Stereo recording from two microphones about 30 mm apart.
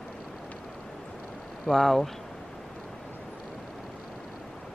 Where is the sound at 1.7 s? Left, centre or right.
Centre.